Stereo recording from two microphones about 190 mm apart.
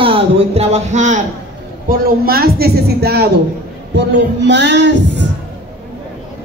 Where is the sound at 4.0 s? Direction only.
65° right (ahead or behind).